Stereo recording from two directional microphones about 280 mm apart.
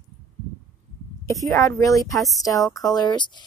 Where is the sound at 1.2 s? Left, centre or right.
Centre.